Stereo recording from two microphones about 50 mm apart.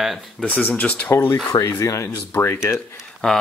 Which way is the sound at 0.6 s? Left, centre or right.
Left.